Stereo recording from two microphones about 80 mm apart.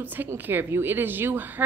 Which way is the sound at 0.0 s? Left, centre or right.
Right.